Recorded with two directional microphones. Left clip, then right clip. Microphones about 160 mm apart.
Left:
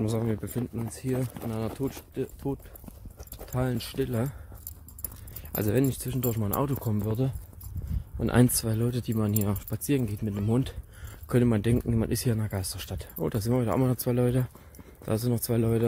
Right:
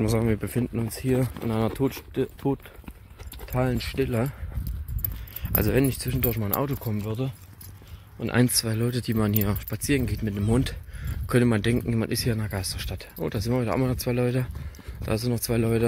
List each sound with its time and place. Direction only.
0.0 s speech: 15° right (ahead or behind)
0.4 s speech: 25° right (ahead or behind)
0.9 s speech: 40° right (ahead or behind)
3.5 s speech: 15° right (ahead or behind)
5.4 s speech: centre (ahead or behind)
7.1 s speech: 40° left (ahead or behind)
8.2 s speech: 25° left (ahead or behind); by 15.8 s 5° left (ahead or behind)